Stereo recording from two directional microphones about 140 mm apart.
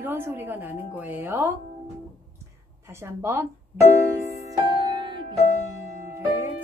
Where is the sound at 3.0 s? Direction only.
15° right (ahead or behind).